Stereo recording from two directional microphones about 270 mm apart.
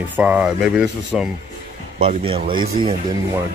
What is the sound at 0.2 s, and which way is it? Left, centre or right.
Speech, centre.